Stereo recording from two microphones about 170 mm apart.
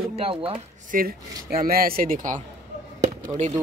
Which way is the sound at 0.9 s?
60° right (ahead or behind).